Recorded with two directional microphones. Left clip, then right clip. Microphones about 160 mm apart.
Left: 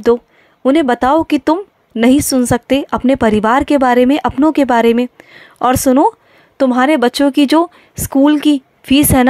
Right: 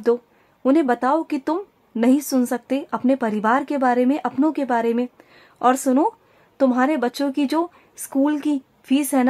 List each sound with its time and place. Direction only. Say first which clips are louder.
0.0 s speech: left 8 dB; 30° left (ahead or behind)